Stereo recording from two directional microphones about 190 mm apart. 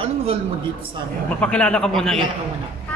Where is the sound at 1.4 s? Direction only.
5° left (ahead or behind).